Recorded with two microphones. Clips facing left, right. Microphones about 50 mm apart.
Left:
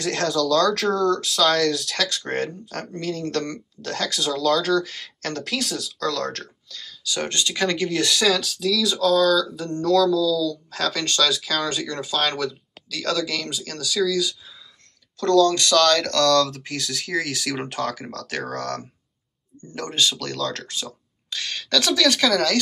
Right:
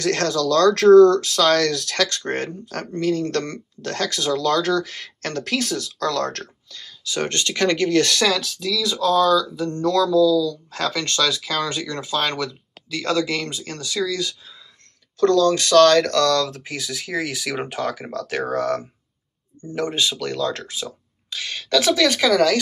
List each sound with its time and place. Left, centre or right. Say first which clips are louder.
0.0 s speech: right 2 dB; right
6.8 s a sound: right 2 dB; right
7.2 s speech: right 3 dB; right
8.3 s speech: left 1 dB; right
15.1 s speech: right 1 dB; right; by 22.6 s centre